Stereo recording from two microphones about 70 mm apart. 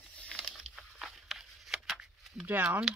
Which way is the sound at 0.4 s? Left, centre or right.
Centre.